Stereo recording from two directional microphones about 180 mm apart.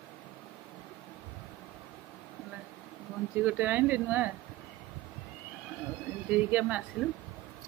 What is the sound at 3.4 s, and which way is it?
Speech, 10° right (ahead or behind).